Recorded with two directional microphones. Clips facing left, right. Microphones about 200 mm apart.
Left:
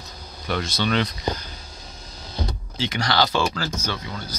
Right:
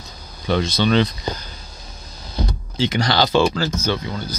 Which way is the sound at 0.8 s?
30° right (ahead or behind).